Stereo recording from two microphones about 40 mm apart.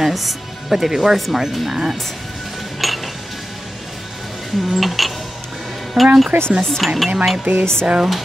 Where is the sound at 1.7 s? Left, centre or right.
Centre.